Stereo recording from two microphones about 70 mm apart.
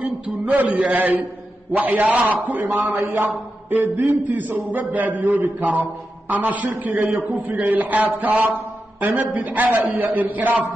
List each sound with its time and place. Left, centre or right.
0.5 s a man's voice: right